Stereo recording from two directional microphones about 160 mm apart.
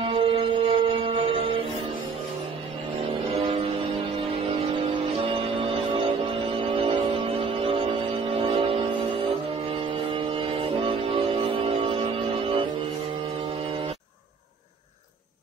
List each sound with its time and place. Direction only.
0.0 s music: 35° right (ahead or behind)
4.9 s music: 30° right (ahead or behind)